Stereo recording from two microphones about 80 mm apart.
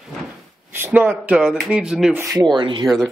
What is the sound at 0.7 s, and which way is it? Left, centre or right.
Speech, right.